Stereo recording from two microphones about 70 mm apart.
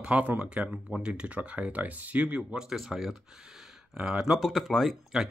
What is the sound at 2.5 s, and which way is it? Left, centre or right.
Speech, centre.